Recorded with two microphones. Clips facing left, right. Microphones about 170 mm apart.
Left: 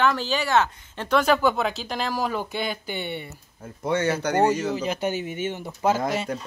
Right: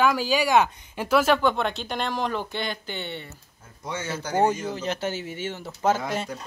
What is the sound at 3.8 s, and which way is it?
Speech, 65° left (ahead or behind).